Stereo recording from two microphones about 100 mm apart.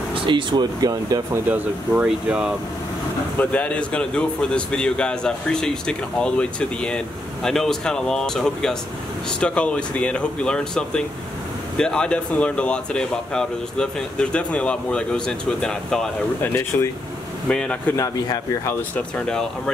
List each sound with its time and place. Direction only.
0.1 s speech: 55° right (ahead or behind)
1.3 s speech: 15° right (ahead or behind)
3.3 s speech: 15° left (ahead or behind)
16.3 s speech: 25° left (ahead or behind)
17.5 s speech: 5° left (ahead or behind)
17.9 s speech: 35° left (ahead or behind)
18.7 s speech: 15° left (ahead or behind)